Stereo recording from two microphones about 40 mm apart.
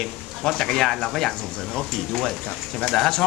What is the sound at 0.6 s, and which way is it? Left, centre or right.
Speech, centre.